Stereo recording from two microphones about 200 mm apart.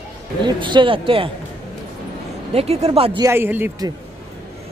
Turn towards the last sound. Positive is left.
turn(degrees=-10)  # may be behind; listen again after turning